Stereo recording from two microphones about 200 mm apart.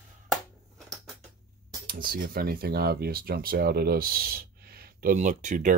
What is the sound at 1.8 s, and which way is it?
Speech, 45° right (ahead or behind).